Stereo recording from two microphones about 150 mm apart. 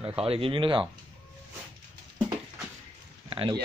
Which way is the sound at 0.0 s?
40° right (ahead or behind).